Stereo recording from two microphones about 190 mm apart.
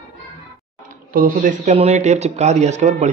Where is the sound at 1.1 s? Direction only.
45° right (ahead or behind).